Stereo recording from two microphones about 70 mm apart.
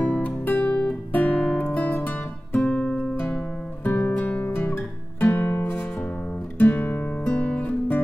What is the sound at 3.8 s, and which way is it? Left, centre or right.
Music, left.